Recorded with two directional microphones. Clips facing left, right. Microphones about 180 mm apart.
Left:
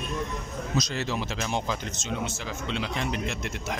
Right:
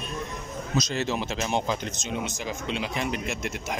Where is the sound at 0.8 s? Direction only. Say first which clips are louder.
Right 3 dB; 20° right (ahead or behind).